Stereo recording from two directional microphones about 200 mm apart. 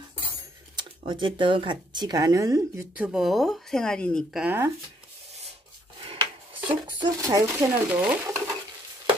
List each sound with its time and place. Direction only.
0.7 s speech: 25° right (ahead or behind); by 4.6 s 5° right (ahead or behind)
6.0 s speech: 25° right (ahead or behind); by 8.4 s 5° right (ahead or behind)